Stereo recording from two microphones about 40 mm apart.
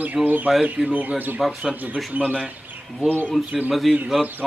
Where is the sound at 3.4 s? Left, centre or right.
Centre.